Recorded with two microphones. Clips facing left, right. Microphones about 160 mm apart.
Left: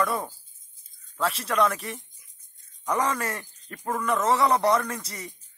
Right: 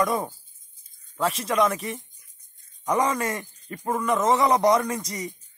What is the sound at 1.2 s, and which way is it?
Speech, 30° right (ahead or behind).